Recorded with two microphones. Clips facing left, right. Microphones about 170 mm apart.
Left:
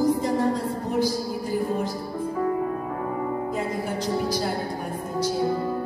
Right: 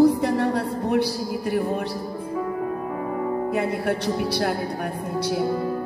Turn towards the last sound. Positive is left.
turn(degrees=-70)  # may be behind; listen again after turning